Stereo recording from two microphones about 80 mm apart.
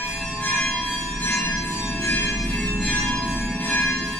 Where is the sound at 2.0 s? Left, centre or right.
Left.